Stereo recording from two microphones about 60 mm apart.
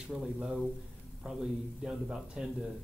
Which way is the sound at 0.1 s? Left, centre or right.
Centre.